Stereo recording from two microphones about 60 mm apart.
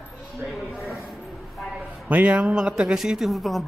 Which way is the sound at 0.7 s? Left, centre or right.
Centre.